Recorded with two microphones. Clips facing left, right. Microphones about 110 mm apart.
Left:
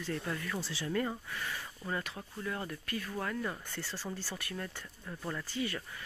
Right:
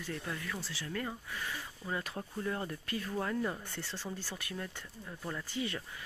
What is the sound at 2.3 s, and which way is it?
Speech, 25° right (ahead or behind).